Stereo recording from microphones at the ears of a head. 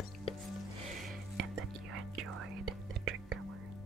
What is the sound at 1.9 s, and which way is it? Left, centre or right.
Whispering, right.